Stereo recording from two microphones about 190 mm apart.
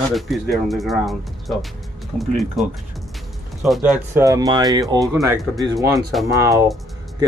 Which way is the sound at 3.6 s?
Centre (ahead or behind).